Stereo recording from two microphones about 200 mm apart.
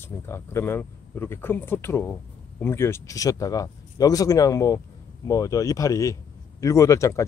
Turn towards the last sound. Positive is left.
turn(degrees=15)  # may be behind; listen again after turning